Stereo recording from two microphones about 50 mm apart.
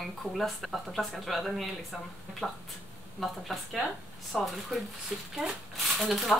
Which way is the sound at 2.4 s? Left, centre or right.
Centre.